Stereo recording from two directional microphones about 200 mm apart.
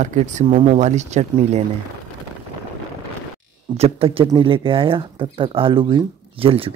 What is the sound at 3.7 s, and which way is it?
Speech, 30° right (ahead or behind).